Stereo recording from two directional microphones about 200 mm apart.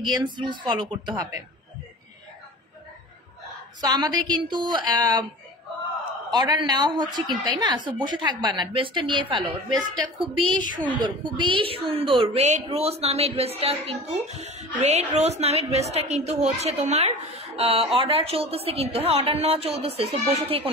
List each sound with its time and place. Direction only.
0.0 s a woman's voice: 20° right (ahead or behind)
3.8 s a woman's voice: 20° right (ahead or behind)
6.3 s a woman's voice: 20° right (ahead or behind)